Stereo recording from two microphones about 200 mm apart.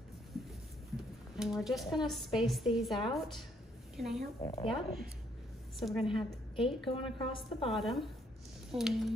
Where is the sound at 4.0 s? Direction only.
Centre (ahead or behind).